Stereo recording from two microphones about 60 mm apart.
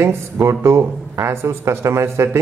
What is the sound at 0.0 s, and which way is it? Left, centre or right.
Speech, right.